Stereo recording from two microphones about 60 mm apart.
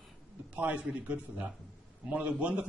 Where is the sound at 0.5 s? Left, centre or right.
Right.